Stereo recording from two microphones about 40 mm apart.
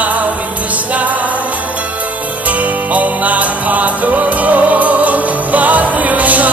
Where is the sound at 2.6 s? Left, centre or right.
Right.